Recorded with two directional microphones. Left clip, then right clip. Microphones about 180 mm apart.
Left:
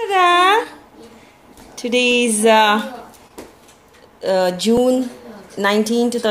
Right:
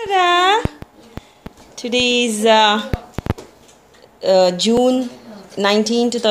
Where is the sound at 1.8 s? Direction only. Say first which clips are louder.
Left 1 dB; 20° right (ahead or behind).